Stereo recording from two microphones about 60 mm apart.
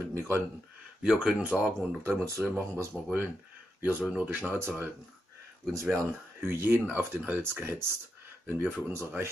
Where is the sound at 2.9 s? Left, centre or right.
Centre.